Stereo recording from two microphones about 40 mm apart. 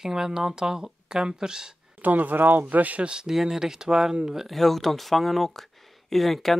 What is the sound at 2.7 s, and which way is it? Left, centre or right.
Speech, right.